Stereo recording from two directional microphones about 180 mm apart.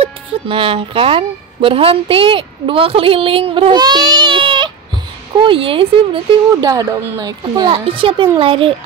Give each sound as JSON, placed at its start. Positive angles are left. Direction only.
{"t": 0.0, "sound": "a woman's voice", "side_deg": -30}